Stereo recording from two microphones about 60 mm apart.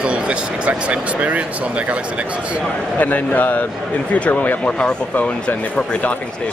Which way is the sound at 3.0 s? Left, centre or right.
Left.